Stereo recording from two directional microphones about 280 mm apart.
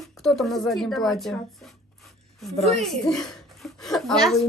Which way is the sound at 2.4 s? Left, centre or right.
Centre.